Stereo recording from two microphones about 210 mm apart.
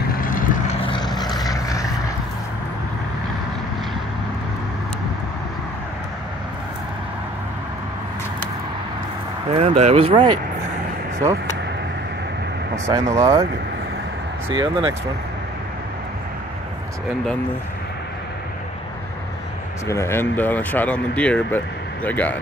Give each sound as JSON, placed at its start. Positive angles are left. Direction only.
{"t": 0.1, "sound": "vehicle", "side_deg": 40}
{"t": 0.7, "sound": "vehicle", "side_deg": 25}
{"t": 9.6, "sound": "speech", "side_deg": -30}
{"t": 12.7, "sound": "speech", "side_deg": -15}
{"t": 14.5, "sound": "speech", "side_deg": -25}
{"t": 19.9, "sound": "speech", "side_deg": 10}